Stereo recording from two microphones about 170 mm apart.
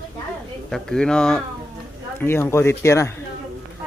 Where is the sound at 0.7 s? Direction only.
5° left (ahead or behind).